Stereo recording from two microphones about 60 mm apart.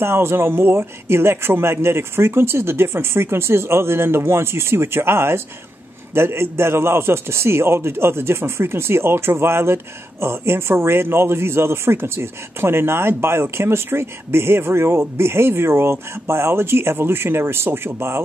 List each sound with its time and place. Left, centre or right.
0.0 s a man's voice: right